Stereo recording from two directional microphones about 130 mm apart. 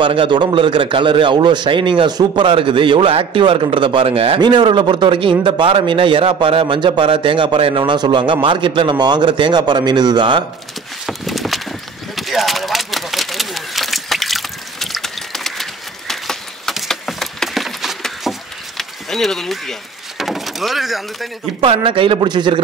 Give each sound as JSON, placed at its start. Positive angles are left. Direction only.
{"t": 0.0, "sound": "a man's voice", "side_deg": -40}
{"t": 4.4, "sound": "a man's voice", "side_deg": -35}
{"t": 11.1, "sound": "clip-clop", "side_deg": 0}
{"t": 12.2, "sound": "a sound", "side_deg": 0}
{"t": 18.8, "sound": "speech", "side_deg": 0}
{"t": 21.5, "sound": "a man's voice", "side_deg": -45}